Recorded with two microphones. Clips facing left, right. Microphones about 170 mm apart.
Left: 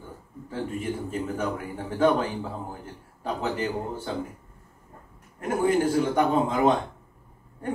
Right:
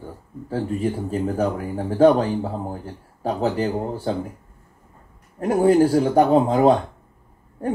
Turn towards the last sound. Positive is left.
turn(degrees=-40)  # may be behind; listen again after turning